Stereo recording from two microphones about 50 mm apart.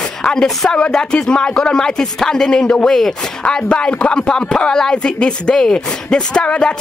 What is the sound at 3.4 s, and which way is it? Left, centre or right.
A woman's voice, left.